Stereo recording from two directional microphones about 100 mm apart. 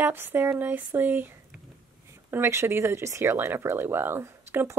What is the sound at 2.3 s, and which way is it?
A woman's voice, 25° right (ahead or behind).